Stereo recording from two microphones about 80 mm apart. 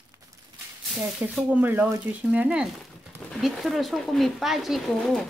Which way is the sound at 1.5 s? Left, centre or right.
Right.